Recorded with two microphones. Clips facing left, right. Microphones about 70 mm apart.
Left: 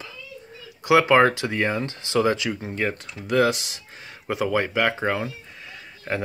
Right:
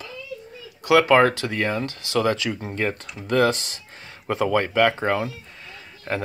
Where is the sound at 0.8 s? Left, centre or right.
Centre.